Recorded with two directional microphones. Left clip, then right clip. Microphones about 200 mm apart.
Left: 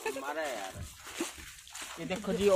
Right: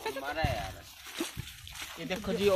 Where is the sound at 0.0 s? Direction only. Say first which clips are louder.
Right 1 dB; 40° right (ahead or behind).